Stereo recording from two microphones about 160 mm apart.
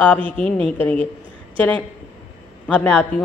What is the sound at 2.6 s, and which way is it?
Speech, 10° left (ahead or behind).